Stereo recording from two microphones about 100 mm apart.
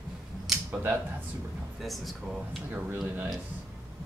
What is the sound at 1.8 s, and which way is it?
Speech, centre (ahead or behind).